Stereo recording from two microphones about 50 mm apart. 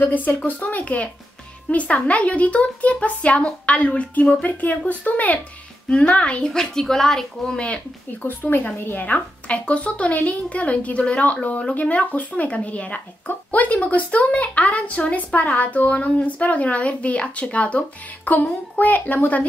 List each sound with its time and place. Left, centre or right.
0.0 s speech: left
5.9 s speech: left
7.5 s speech: left
8.2 s a woman's voice: left
9.0 s speech: left